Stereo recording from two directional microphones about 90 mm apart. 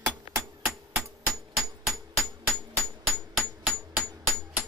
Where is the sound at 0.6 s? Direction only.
5° right (ahead or behind).